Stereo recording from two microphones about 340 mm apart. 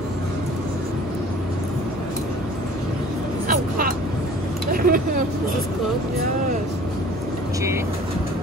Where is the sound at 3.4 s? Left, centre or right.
Right.